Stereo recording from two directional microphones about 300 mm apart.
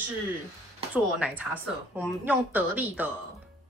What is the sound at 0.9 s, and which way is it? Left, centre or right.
A woman's voice, centre.